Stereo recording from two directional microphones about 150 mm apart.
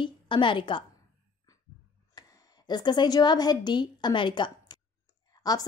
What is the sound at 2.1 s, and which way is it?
A woman's voice, 30° left (ahead or behind).